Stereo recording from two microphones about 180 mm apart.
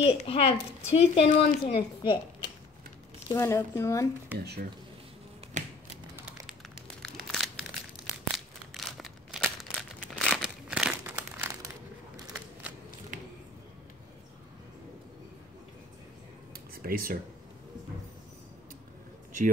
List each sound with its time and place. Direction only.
0.0 s speech: 30° left (ahead or behind)
3.3 s speech: 15° left (ahead or behind)
4.4 s speech: 60° right (ahead or behind)
5.5 s finger snapping: 40° right (ahead or behind)
7.0 s crushing: centre (ahead or behind)
8.7 s crumpling: centre (ahead or behind)
16.5 s a sound: 55° right (ahead or behind)